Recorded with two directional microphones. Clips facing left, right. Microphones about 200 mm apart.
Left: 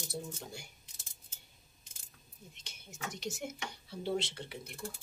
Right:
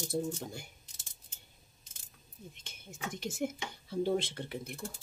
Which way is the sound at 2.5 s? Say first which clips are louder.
Right 1 dB; 55° right (ahead or behind).